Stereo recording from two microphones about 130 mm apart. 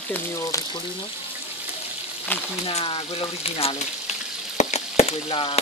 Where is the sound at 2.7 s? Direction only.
45° left (ahead or behind).